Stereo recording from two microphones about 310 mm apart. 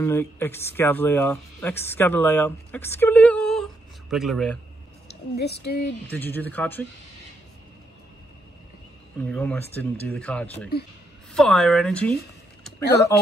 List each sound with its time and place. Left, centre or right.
0.0 s speech: centre
5.0 s speech: left
6.1 s speech: centre
9.2 s speech: centre
12.8 s speech: left